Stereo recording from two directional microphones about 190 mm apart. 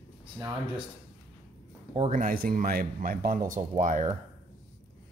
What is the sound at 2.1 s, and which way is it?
Speech, 50° right (ahead or behind).